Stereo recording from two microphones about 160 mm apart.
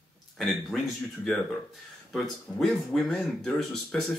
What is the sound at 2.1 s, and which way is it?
Speech, centre (ahead or behind).